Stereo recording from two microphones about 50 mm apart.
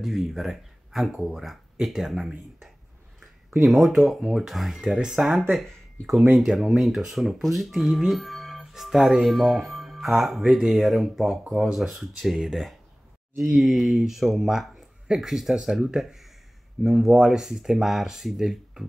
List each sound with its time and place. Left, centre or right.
0.0 s speech: centre
4.9 s speech: centre
5.5 s speech: centre